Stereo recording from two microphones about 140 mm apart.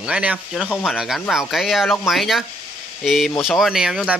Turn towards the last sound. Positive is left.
turn(degrees=-5)  # may be behind; listen again after turning